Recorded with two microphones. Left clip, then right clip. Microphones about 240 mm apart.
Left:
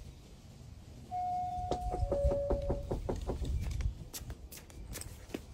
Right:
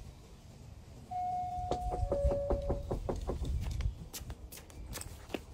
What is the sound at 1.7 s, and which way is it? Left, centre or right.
Knock, centre.